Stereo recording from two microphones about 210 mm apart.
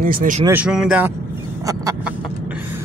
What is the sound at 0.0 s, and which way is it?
Speech, 40° right (ahead or behind).